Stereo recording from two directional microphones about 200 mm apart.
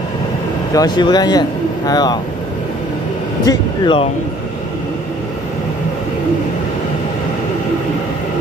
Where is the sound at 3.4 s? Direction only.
25° left (ahead or behind).